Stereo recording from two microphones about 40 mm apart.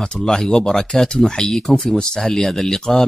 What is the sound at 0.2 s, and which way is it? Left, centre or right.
Speech, centre.